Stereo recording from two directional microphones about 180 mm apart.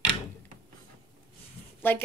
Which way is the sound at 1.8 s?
10° left (ahead or behind).